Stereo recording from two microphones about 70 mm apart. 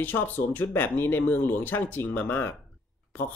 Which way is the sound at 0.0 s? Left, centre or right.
Left.